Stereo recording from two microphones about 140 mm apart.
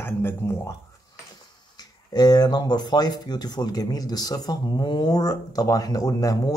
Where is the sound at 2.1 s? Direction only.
30° left (ahead or behind).